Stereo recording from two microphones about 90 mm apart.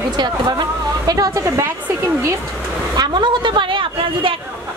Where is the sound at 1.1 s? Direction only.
40° right (ahead or behind).